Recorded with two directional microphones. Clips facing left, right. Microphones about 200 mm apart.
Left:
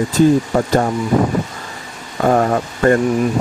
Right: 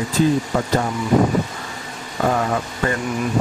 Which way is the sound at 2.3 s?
45° left (ahead or behind).